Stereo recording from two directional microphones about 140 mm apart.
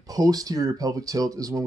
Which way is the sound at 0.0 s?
25° right (ahead or behind).